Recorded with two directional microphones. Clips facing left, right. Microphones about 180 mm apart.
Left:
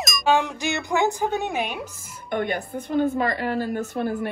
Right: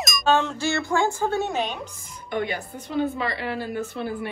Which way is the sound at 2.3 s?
55° left (ahead or behind).